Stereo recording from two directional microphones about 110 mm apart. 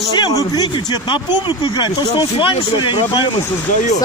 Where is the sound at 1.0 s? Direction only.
45° left (ahead or behind).